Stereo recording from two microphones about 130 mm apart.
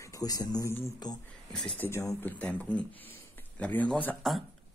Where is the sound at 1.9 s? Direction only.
20° left (ahead or behind).